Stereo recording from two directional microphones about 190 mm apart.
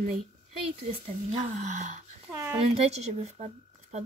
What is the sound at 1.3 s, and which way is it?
Speech, 40° right (ahead or behind).